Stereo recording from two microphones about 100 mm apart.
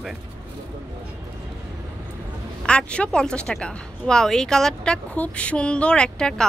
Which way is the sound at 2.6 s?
10° left (ahead or behind).